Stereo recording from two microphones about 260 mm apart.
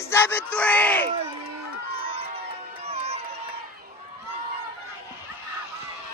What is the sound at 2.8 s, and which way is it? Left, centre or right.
Crowd, right.